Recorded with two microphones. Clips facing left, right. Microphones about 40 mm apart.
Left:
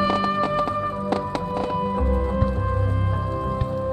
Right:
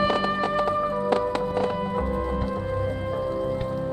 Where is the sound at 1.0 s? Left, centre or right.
Centre.